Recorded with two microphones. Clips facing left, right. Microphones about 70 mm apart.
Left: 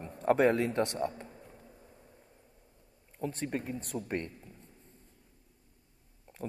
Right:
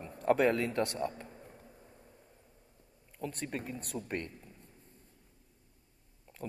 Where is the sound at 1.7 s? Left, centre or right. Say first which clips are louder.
Left 1 dB; centre.